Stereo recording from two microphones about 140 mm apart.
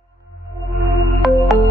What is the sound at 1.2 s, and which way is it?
Music, centre (ahead or behind).